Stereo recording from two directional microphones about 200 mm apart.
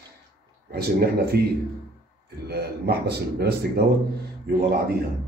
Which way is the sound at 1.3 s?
55° right (ahead or behind).